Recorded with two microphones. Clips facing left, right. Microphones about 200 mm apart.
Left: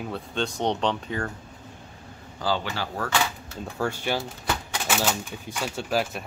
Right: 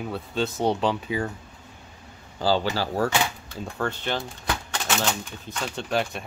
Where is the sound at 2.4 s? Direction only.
30° right (ahead or behind).